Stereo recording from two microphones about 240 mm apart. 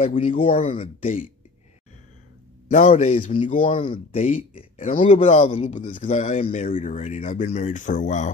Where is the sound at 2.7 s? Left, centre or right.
Left.